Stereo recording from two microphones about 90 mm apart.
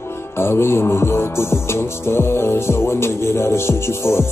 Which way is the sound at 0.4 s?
25° left (ahead or behind).